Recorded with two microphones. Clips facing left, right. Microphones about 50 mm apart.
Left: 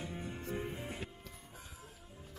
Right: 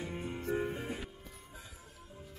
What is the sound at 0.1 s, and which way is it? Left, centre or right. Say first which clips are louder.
Music: right 5 dB; right.